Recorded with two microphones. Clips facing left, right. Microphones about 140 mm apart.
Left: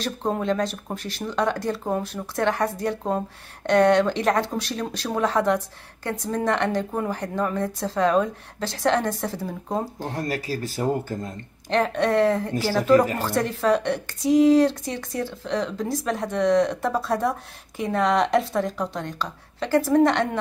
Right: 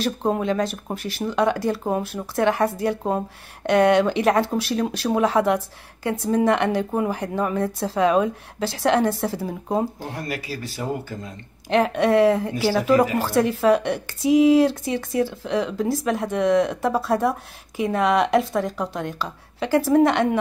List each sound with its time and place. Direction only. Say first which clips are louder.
0.0 s speech: right 3 dB; 5° right (ahead or behind)
10.1 s speech: left 2 dB; 35° left (ahead or behind)
11.7 s a woman's voice: right 3 dB; 10° right (ahead or behind)